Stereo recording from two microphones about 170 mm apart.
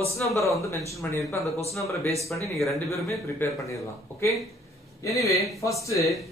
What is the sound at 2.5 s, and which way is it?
Speech, centre (ahead or behind).